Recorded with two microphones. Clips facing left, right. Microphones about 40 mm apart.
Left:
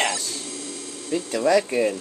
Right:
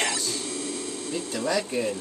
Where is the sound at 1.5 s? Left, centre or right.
Left.